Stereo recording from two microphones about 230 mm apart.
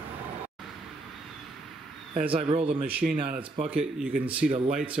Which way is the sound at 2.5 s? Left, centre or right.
Right.